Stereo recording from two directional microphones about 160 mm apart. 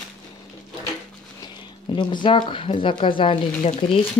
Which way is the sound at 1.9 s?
30° left (ahead or behind).